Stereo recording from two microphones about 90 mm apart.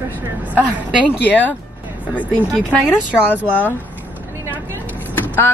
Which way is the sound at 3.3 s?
20° right (ahead or behind).